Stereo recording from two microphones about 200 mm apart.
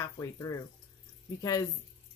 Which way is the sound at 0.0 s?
15° left (ahead or behind).